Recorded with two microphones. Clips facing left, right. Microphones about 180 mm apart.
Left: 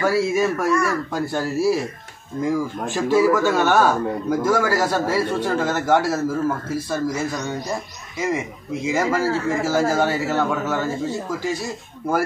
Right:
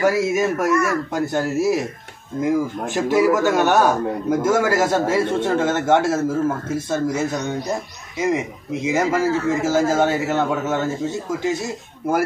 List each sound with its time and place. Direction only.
0.0 s a man's voice: 20° right (ahead or behind)